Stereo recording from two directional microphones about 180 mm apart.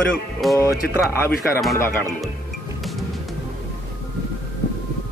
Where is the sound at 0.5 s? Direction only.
15° left (ahead or behind).